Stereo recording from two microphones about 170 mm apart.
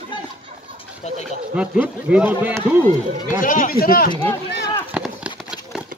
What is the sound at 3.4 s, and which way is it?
Speech, 55° left (ahead or behind).